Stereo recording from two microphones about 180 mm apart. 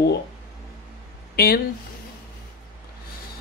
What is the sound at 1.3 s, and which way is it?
Speech, 60° left (ahead or behind).